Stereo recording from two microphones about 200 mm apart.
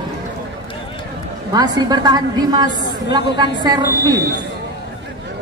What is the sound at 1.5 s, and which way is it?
A woman's voice, 20° right (ahead or behind).